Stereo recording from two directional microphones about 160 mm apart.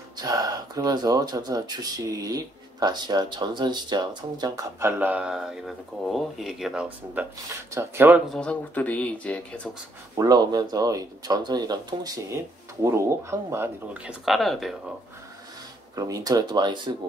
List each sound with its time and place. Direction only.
0.2 s speech: 25° right (ahead or behind)
4.8 s speech: 10° right (ahead or behind)
8.3 s speech: 5° left (ahead or behind)
10.1 s speech: 25° right (ahead or behind)
14.2 s speech: centre (ahead or behind)
16.0 s speech: 20° right (ahead or behind)